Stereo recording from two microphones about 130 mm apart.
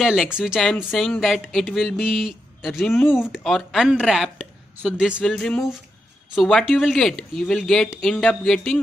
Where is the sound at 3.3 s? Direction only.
Centre (ahead or behind).